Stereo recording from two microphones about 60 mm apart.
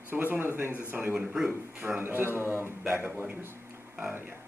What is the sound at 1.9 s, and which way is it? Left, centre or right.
A man's voice, right.